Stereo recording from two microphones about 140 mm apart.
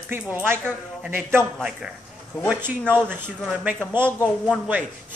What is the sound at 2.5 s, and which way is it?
Speech, 15° right (ahead or behind).